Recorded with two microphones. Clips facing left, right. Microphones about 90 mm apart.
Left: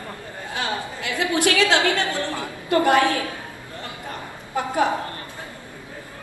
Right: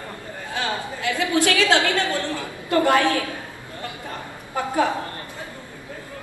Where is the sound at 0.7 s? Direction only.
20° left (ahead or behind).